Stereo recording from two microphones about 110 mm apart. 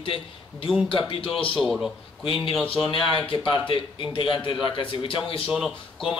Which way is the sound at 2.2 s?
55° left (ahead or behind).